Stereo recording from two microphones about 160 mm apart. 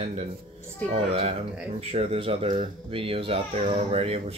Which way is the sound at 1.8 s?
40° right (ahead or behind).